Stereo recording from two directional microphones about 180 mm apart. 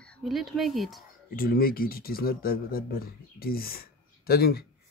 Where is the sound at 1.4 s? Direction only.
55° left (ahead or behind).